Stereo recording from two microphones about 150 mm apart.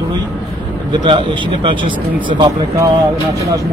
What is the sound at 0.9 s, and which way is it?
Speech, 30° right (ahead or behind).